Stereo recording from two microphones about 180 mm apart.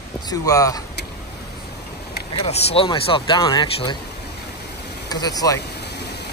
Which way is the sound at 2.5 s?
35° left (ahead or behind).